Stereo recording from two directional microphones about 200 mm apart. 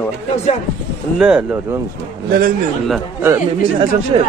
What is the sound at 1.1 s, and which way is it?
Speech, 5° right (ahead or behind).